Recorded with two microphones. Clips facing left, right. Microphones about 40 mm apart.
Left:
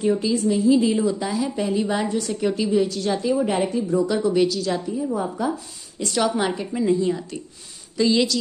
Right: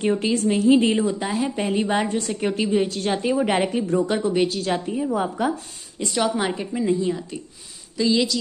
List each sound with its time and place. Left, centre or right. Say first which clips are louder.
0.0 s a woman's voice: even; right
3.5 s a woman's voice: even; right
5.1 s speech: right 3 dB; right
6.0 s a woman's voice: left 1 dB; centre